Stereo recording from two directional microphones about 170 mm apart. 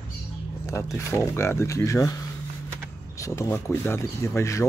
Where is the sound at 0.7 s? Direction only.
20° left (ahead or behind).